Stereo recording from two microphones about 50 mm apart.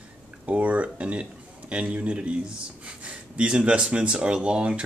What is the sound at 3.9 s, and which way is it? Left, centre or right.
Speech, right.